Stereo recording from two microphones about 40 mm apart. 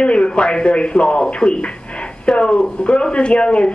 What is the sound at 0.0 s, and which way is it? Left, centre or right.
Speech, left.